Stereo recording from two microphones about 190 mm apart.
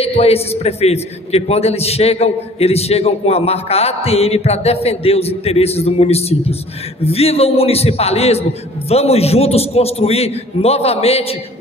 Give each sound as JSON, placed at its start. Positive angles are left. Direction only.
{"t": 0.0, "sound": "a man's voice", "side_deg": 30}